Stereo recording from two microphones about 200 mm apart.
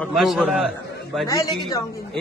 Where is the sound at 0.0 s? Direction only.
Centre (ahead or behind).